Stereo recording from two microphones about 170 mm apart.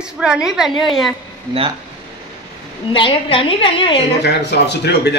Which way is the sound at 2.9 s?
30° left (ahead or behind).